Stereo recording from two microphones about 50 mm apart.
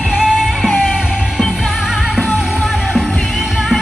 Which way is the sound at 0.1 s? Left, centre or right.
Centre.